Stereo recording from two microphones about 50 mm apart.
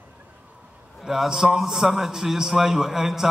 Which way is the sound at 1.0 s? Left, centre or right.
Centre.